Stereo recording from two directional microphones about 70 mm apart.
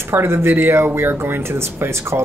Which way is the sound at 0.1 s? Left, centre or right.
Right.